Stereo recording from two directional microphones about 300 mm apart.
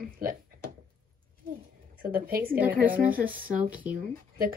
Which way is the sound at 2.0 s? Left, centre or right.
Right.